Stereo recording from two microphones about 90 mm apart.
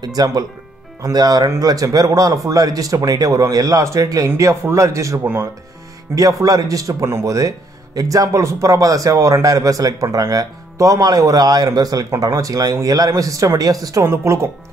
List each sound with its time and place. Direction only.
0.0 s a man's voice: 45° right (ahead or behind); by 5.5 s 25° right (ahead or behind)
6.1 s a man's voice: 40° right (ahead or behind)
14.0 s a man's voice: 30° right (ahead or behind)